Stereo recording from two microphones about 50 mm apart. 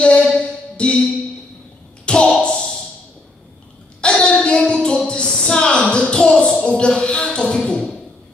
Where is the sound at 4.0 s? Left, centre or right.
Centre.